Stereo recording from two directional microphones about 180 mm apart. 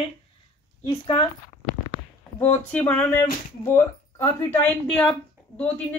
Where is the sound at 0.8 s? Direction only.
25° left (ahead or behind).